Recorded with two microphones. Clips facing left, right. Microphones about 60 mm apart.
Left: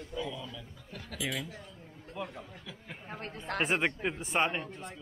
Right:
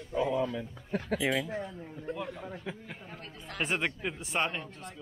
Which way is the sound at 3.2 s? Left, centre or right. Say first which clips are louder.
Left 6 dB; left.